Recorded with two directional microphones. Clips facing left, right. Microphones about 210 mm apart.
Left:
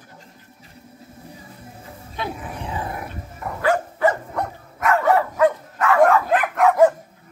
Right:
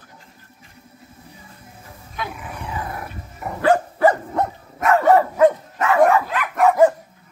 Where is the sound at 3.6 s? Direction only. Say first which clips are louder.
Right 3 dB; 30° right (ahead or behind).